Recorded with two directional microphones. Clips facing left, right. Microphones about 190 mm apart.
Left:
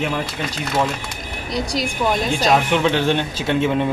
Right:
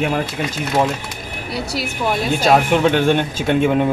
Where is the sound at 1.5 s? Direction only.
5° right (ahead or behind).